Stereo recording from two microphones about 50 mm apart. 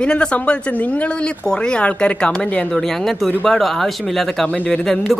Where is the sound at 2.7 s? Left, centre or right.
Centre.